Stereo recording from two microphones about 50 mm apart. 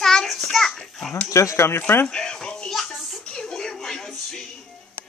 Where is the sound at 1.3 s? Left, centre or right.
Left.